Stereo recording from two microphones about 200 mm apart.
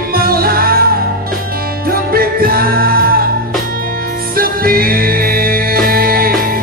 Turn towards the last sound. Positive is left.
turn(degrees=-45)  # may be behind; listen again after turning